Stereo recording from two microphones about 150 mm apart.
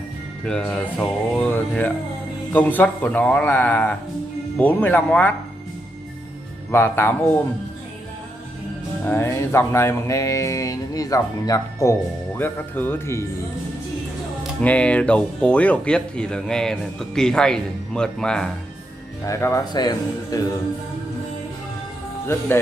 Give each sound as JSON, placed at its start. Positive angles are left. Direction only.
{"t": 0.5, "sound": "speech", "side_deg": 10}
{"t": 6.7, "sound": "speech", "side_deg": 15}
{"t": 9.0, "sound": "speech", "side_deg": 15}
{"t": 14.6, "sound": "speech", "side_deg": 10}
{"t": 19.2, "sound": "speech", "side_deg": 20}